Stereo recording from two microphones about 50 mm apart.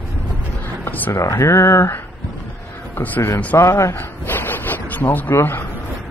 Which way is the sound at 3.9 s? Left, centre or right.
Left.